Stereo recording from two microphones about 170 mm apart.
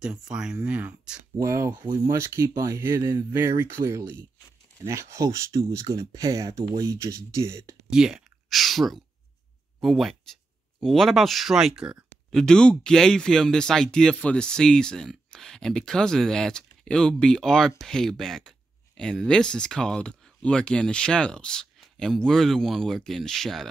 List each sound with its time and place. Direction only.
0.0 s speech: 5° right (ahead or behind)
7.9 s speech: 5° right (ahead or behind)